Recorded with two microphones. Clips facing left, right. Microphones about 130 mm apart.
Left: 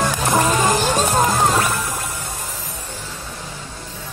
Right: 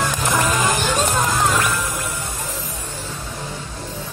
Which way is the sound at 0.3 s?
40° left (ahead or behind).